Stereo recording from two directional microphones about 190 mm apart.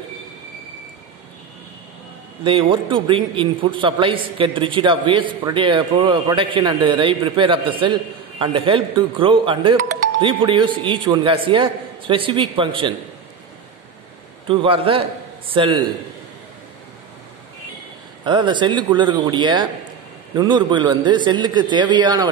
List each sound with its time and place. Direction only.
2.4 s a man's voice: 25° right (ahead or behind)
14.5 s a man's voice: 30° right (ahead or behind)
18.2 s a man's voice: 25° right (ahead or behind)